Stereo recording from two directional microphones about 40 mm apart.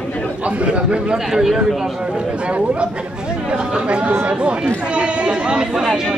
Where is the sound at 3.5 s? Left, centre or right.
Right.